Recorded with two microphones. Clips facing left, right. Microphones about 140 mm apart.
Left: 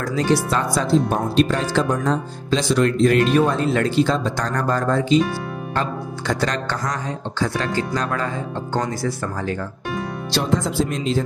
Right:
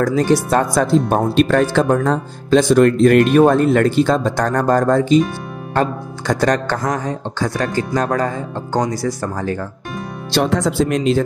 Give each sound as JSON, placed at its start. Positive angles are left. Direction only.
{"t": 0.0, "sound": "speech", "side_deg": -45}
{"t": 10.3, "sound": "speech", "side_deg": -75}